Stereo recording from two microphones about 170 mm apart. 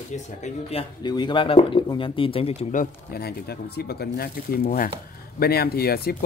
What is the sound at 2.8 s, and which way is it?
Speech, 65° left (ahead or behind).